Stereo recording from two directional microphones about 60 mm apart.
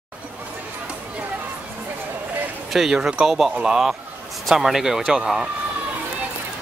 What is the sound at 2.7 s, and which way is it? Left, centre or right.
Speech, centre.